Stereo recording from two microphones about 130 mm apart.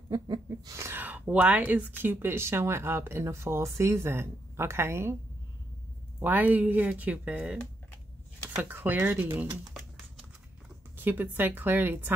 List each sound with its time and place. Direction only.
0.1 s speech: 25° right (ahead or behind)
6.2 s speech: 15° right (ahead or behind)
8.6 s speech: 15° right (ahead or behind)
11.0 s speech: 15° right (ahead or behind)